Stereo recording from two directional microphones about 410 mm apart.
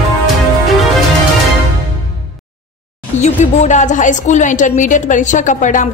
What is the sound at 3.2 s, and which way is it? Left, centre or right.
A woman's voice, centre.